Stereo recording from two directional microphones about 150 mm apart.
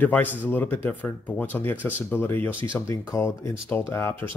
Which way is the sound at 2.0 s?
15° left (ahead or behind).